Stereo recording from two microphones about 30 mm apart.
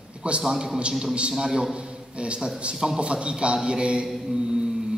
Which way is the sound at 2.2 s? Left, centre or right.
Right.